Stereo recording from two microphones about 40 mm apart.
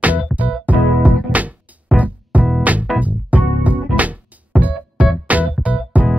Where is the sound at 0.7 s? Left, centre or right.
Right.